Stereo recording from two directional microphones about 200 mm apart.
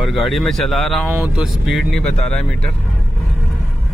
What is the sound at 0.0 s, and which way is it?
Speech, centre (ahead or behind).